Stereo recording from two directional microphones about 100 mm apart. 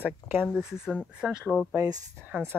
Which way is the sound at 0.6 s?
5° right (ahead or behind).